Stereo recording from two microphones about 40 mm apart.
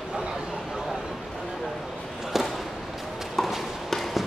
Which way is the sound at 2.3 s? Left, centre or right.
Centre.